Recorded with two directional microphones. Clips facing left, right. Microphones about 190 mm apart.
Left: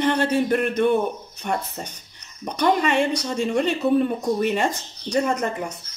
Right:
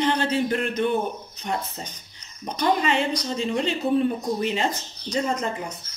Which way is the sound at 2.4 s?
60° left (ahead or behind).